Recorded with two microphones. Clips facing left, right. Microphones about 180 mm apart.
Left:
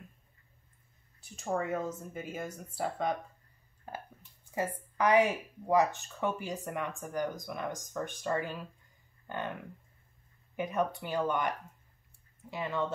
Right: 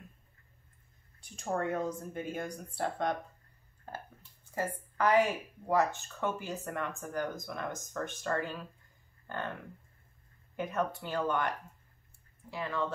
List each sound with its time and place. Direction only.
1.2 s speech: 5° left (ahead or behind)
4.6 s speech: 15° left (ahead or behind)
10.5 s speech: 15° left (ahead or behind)